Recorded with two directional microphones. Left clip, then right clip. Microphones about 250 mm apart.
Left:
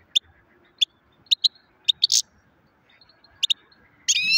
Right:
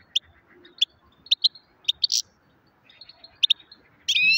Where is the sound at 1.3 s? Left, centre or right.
Left.